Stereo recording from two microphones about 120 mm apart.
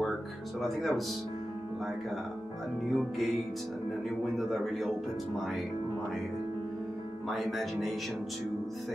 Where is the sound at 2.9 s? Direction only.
Centre (ahead or behind).